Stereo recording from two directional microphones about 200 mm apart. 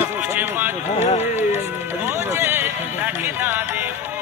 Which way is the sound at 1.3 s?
10° right (ahead or behind).